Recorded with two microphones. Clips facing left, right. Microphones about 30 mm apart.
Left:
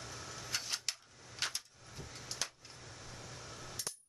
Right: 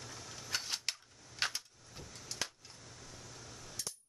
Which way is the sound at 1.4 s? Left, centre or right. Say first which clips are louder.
Right 3 dB; right.